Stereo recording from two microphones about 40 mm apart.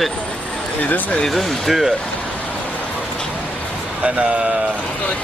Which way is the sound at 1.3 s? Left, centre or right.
Centre.